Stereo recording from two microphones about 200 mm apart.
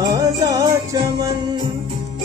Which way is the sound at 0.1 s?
20° right (ahead or behind).